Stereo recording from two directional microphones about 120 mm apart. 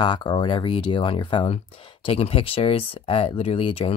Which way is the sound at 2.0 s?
50° left (ahead or behind).